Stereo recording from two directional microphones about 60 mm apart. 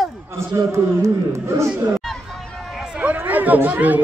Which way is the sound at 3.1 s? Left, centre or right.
Right.